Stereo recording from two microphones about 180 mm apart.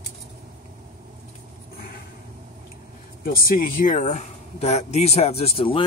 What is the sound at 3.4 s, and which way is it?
Speech, 50° left (ahead or behind).